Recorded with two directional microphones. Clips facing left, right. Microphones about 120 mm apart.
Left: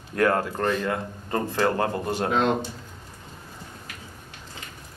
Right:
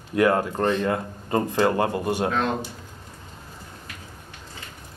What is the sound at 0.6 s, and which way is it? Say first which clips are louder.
Speech: right 3 dB; 25° right (ahead or behind).